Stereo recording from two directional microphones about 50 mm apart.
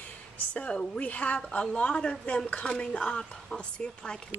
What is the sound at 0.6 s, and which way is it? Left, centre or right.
Speech, left.